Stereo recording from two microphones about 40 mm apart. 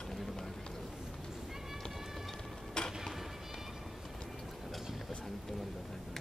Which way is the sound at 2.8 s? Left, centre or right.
Left.